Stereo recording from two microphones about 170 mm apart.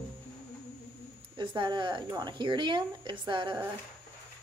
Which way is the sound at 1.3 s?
30° right (ahead or behind).